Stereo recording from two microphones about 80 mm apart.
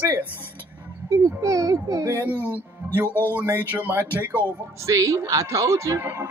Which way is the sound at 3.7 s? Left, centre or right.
Right.